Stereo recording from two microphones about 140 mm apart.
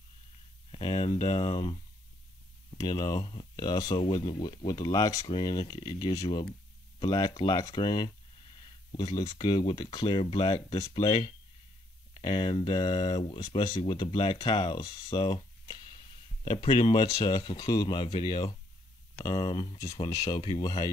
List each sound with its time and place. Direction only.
0.7 s speech: 40° left (ahead or behind)
2.8 s speech: 30° left (ahead or behind)